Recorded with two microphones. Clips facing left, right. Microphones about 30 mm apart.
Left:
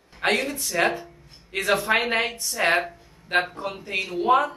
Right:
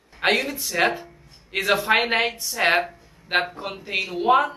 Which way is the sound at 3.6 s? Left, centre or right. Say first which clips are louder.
Left 1 dB; right.